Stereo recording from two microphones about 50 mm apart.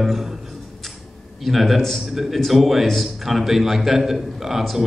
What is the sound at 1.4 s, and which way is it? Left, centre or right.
A man's voice, centre.